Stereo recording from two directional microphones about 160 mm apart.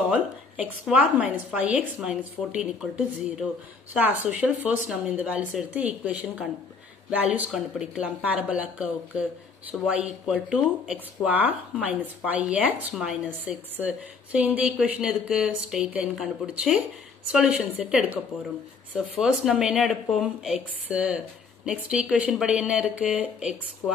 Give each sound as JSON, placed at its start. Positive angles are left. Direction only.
{"t": 0.1, "sound": "a woman's voice", "side_deg": -10}